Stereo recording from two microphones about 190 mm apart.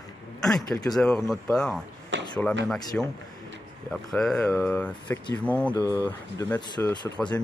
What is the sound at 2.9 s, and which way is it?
Speech, 5° left (ahead or behind).